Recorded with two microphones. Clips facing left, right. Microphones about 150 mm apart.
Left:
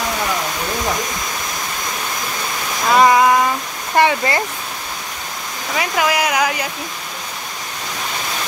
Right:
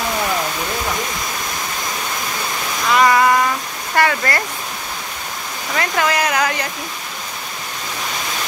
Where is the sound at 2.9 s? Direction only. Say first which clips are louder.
Left 2 dB; 15° left (ahead or behind).